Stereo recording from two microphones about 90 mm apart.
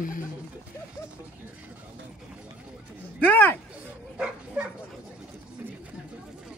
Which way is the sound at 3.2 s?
20° left (ahead or behind).